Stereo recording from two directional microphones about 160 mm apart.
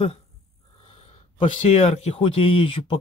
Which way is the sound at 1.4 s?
45° left (ahead or behind).